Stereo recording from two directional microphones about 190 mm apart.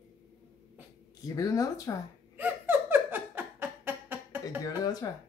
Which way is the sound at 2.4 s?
10° right (ahead or behind).